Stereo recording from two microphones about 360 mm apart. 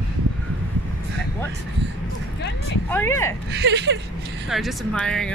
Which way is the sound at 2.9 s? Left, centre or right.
Centre.